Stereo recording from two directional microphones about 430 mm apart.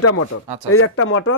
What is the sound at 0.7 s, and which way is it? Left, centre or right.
Speech, left.